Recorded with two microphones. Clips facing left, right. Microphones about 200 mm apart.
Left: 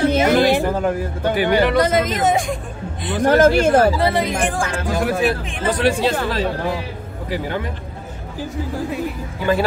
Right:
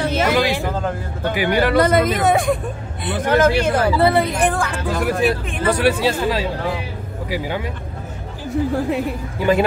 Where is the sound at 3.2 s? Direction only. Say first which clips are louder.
Left 3 dB; 50° left (ahead or behind).